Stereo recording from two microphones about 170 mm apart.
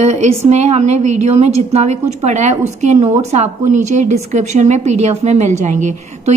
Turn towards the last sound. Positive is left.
turn(degrees=-45)  # may be behind; listen again after turning